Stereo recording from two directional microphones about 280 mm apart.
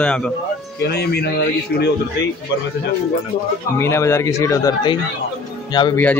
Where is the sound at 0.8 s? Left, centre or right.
Left.